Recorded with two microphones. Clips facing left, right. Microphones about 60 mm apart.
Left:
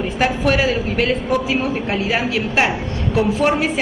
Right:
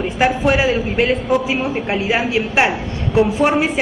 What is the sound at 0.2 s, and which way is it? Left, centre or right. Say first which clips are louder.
A woman's voice: right 2 dB; centre.